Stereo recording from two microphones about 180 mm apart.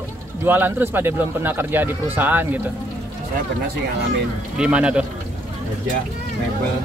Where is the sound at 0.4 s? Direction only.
10° right (ahead or behind).